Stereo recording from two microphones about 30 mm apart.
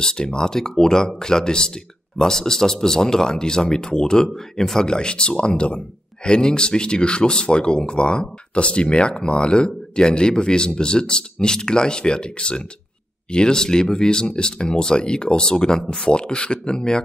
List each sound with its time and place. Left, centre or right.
0.0 s speech: left
16.0 s speech: left